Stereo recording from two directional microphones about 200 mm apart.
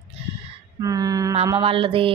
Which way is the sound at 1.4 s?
25° right (ahead or behind).